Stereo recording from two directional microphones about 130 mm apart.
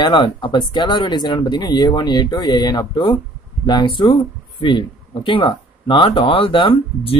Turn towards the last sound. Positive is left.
turn(degrees=45)  # may be behind; listen again after turning